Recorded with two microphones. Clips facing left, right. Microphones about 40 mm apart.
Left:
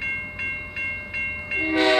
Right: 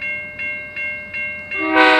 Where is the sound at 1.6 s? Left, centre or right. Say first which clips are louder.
Right 8 dB; right.